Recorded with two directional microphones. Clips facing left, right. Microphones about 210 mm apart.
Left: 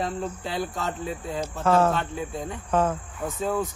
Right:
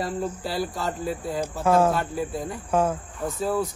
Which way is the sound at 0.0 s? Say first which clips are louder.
Right 1 dB; 5° right (ahead or behind).